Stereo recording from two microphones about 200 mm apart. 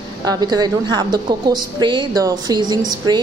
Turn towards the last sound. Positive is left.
turn(degrees=-20)  # may be behind; listen again after turning